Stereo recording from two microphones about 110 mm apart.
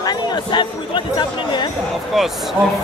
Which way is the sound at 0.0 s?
45° left (ahead or behind).